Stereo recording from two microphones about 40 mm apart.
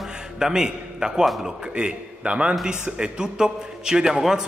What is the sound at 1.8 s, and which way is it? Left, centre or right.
Speech, right.